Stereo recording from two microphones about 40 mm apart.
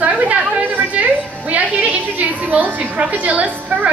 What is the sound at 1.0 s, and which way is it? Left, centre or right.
Speech, right.